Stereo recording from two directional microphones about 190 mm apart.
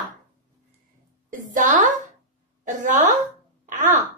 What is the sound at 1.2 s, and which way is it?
A woman's voice, 40° right (ahead or behind).